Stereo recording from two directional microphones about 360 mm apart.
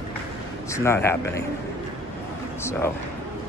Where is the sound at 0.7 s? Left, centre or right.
Centre.